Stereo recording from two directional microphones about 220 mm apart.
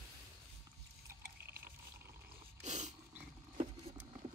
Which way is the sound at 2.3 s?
30° right (ahead or behind).